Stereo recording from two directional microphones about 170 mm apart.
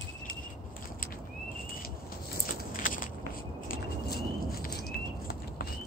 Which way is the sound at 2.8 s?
55° left (ahead or behind).